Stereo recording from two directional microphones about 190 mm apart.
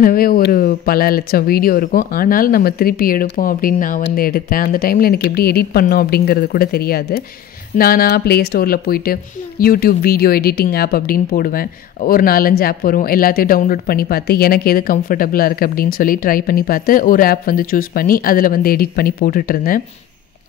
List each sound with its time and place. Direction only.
0.0 s a woman's voice: 50° left (ahead or behind)